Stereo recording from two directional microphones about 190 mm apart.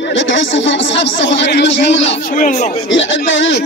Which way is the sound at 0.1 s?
75° left (ahead or behind).